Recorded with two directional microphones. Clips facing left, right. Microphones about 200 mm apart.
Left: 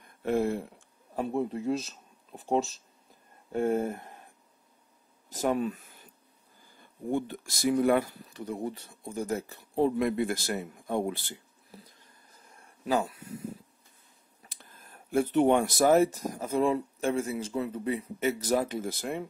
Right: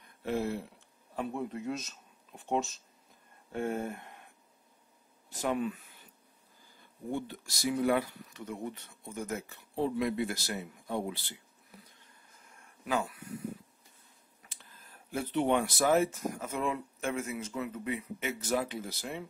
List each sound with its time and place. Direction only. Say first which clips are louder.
0.2 s a sound: left 5 dB; 50° left (ahead or behind)
1.2 s speech: left 6 dB; 30° left (ahead or behind)
5.3 s speech: left 4 dB; 40° left (ahead or behind)
7.1 s speech: left 6 dB; 50° left (ahead or behind)
11.7 s a sound: left 5 dB; 30° left (ahead or behind)
14.5 s speech: left 4 dB; 45° left (ahead or behind)